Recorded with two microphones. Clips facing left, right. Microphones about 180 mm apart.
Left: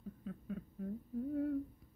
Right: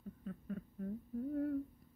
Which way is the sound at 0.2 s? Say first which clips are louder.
Even; centre (ahead or behind).